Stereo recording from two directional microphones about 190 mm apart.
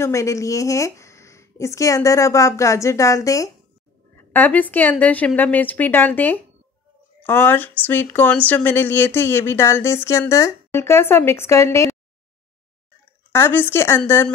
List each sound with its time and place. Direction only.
0.0 s speech: 15° left (ahead or behind)
13.3 s speech: 10° left (ahead or behind)